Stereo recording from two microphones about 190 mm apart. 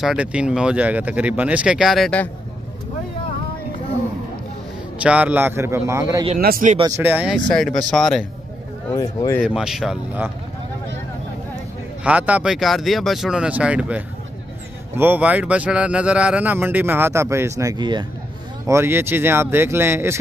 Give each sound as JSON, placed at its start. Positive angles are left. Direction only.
{"t": 0.0, "sound": "speech", "side_deg": -5}
{"t": 5.0, "sound": "speech", "side_deg": -10}
{"t": 6.3, "sound": "speech", "side_deg": -45}
{"t": 6.8, "sound": "speech", "side_deg": -15}
{"t": 8.9, "sound": "speech", "side_deg": 15}
{"t": 9.4, "sound": "speech", "side_deg": -5}
{"t": 12.0, "sound": "speech", "side_deg": -5}
{"t": 18.7, "sound": "speech", "side_deg": -10}